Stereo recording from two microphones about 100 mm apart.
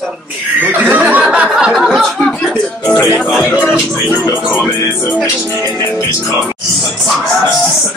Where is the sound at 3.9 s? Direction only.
5° right (ahead or behind).